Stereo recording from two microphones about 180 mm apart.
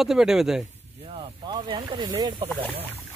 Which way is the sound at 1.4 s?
25° right (ahead or behind).